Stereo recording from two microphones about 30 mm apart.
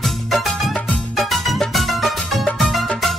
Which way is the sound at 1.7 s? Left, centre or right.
Centre.